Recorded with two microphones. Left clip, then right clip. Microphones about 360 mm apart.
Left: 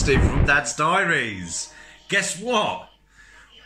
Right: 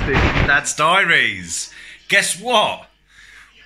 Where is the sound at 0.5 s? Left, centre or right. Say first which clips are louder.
Right 2 dB; centre.